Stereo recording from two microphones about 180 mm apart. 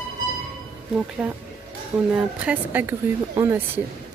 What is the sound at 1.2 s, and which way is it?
A woman's voice, 10° right (ahead or behind).